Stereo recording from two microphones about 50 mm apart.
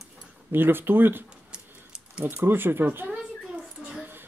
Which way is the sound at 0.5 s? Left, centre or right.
Right.